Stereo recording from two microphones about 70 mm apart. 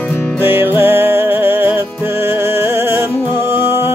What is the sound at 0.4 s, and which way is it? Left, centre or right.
Music, right.